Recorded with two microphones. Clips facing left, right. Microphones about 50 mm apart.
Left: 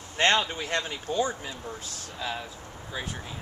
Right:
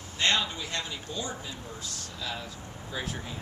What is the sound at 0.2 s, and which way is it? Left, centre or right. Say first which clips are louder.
Speech: left 4 dB; left.